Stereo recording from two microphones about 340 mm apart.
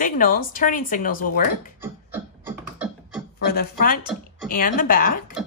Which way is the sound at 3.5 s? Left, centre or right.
Left.